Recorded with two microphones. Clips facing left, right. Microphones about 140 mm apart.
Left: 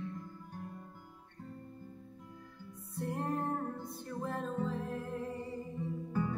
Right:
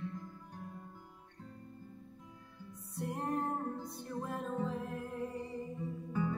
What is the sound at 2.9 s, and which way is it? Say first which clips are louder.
Music: left 1 dB; 15° right (ahead or behind).